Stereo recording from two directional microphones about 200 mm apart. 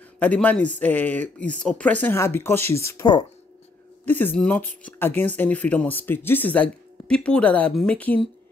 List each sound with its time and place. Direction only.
0.2 s speech: 5° left (ahead or behind)